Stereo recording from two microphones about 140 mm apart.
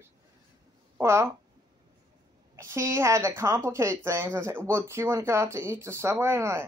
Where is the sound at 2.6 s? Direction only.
20° right (ahead or behind).